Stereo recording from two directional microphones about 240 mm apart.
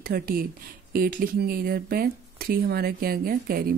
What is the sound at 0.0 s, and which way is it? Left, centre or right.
Speech, right.